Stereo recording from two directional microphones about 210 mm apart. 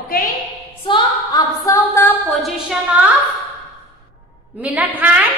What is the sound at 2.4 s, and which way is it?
Speech, 5° right (ahead or behind).